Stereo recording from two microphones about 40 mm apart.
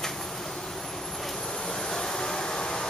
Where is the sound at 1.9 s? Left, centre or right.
Centre.